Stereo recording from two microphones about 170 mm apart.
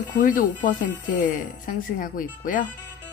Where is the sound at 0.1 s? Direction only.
50° left (ahead or behind).